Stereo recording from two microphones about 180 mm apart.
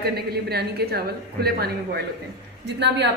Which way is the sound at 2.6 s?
75° right (ahead or behind).